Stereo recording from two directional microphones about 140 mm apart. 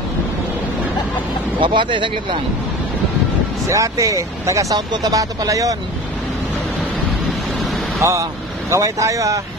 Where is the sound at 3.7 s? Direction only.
20° right (ahead or behind).